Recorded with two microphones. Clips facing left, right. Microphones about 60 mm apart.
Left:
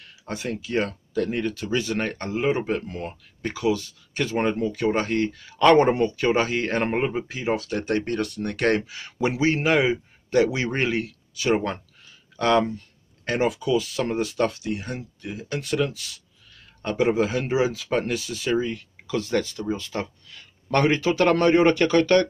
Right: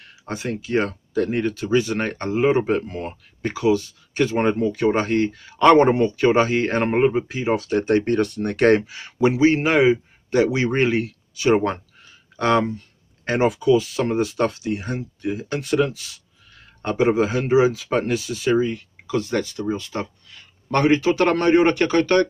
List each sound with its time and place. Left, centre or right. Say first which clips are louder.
0.2 s speech: right 2 dB; centre